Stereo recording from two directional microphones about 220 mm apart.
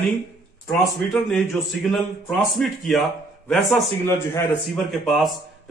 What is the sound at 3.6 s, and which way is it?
Speech, 10° left (ahead or behind).